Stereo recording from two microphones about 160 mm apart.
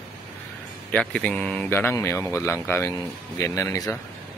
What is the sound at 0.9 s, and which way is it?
Speech, 5° left (ahead or behind).